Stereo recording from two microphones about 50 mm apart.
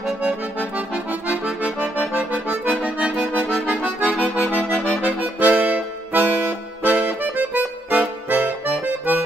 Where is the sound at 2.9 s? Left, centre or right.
Centre.